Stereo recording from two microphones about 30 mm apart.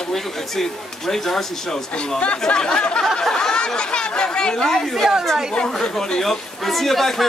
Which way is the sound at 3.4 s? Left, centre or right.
Left.